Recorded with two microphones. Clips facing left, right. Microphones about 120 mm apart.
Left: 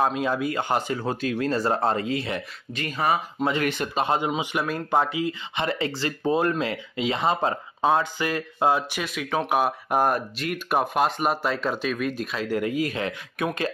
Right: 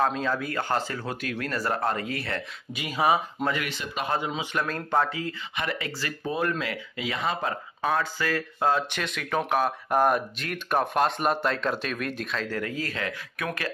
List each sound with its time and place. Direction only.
0.0 s speech: 15° left (ahead or behind)
2.7 s speech: 10° right (ahead or behind)
3.6 s speech: 50° left (ahead or behind)
3.9 s speech: 25° left (ahead or behind)
5.6 s speech: 30° left (ahead or behind); by 12.4 s 5° left (ahead or behind)
12.4 s speech: 20° left (ahead or behind)